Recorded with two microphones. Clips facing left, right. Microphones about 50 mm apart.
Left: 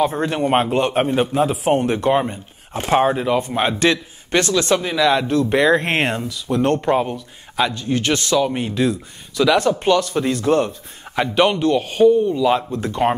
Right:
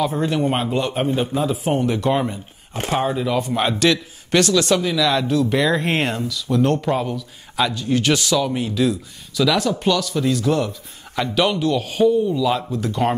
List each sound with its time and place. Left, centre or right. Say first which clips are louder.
0.0 s a man's voice: left 1 dB; left
2.0 s a man's voice: left 4 dB; centre
2.9 s a man's voice: left 4 dB; left
11.1 s a man's voice: left 3 dB; left